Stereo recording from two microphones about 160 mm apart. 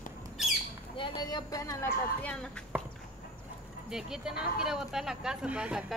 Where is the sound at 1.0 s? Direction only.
25° left (ahead or behind).